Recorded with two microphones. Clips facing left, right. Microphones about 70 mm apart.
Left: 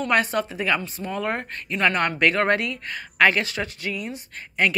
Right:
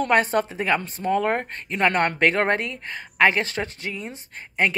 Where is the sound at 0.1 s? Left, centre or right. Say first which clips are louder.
Right 1 dB; right.